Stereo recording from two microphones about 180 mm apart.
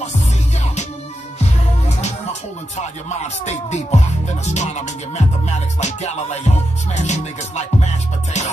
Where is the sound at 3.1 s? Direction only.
40° left (ahead or behind).